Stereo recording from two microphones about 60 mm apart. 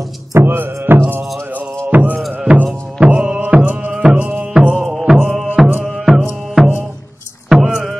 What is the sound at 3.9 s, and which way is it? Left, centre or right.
Music, centre.